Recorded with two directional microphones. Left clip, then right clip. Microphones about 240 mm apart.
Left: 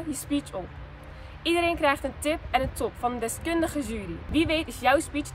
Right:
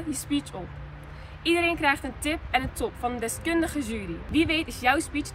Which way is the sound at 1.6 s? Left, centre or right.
Centre.